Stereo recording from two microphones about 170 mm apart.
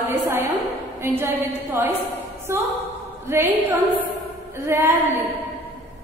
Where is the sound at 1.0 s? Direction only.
15° right (ahead or behind).